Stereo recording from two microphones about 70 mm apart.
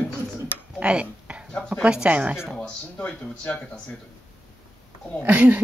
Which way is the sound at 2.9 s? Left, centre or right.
Centre.